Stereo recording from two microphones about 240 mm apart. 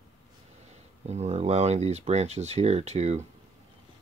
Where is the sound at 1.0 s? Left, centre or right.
Right.